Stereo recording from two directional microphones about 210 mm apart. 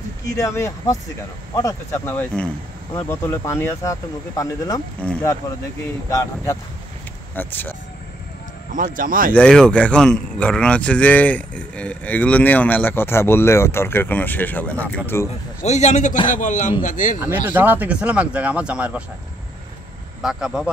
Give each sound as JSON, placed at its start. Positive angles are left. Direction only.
{"t": 0.4, "sound": "speech", "side_deg": 15}
{"t": 2.9, "sound": "speech", "side_deg": 15}
{"t": 5.0, "sound": "speech", "side_deg": 5}
{"t": 8.7, "sound": "speech", "side_deg": -40}
{"t": 9.3, "sound": "speech", "side_deg": 5}
{"t": 15.6, "sound": "a man's voice", "side_deg": 35}
{"t": 17.2, "sound": "speech", "side_deg": -10}
{"t": 20.2, "sound": "speech", "side_deg": -5}